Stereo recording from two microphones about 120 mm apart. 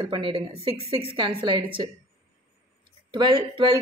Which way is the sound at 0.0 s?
45° right (ahead or behind).